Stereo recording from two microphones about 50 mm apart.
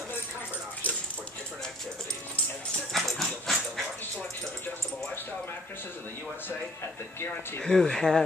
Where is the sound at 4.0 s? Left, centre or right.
Left.